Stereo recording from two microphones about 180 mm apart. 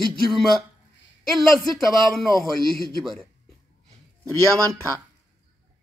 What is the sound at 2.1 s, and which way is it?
Speech, centre (ahead or behind).